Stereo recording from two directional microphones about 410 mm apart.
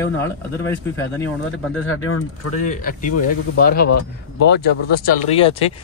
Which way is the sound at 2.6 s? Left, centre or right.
Centre.